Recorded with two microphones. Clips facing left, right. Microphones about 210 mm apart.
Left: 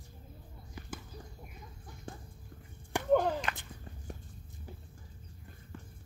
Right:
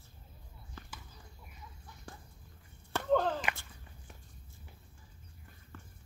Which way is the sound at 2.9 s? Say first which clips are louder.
Left 2 dB; 15° left (ahead or behind).